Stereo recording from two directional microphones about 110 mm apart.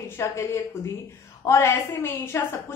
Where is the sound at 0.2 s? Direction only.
25° left (ahead or behind).